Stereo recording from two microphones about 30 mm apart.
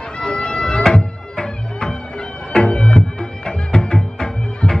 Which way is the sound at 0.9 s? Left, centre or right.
Left.